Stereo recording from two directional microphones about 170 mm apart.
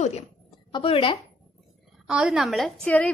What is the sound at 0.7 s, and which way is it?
Speech, 30° left (ahead or behind).